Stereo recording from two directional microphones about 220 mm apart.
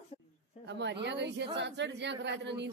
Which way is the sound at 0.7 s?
50° right (ahead or behind).